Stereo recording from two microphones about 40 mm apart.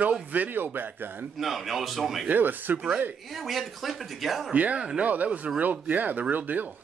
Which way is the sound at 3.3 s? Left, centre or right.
Centre.